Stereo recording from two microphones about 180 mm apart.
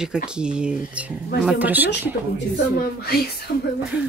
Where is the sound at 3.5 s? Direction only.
60° left (ahead or behind).